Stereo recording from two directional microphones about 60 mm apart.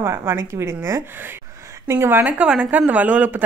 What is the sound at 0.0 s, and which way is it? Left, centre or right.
A woman's voice, right.